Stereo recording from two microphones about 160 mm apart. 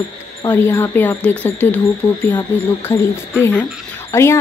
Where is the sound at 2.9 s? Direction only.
15° left (ahead or behind).